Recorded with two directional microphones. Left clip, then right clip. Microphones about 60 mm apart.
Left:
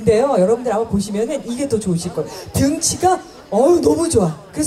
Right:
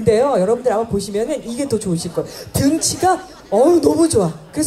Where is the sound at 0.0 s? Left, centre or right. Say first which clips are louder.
Even; centre.